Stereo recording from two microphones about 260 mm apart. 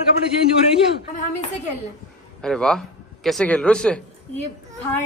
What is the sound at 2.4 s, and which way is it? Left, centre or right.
A man's voice, centre.